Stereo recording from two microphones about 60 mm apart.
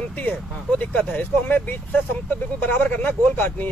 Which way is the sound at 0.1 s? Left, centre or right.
Left.